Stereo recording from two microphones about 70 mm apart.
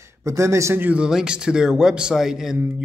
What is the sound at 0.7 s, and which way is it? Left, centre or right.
Speech, right.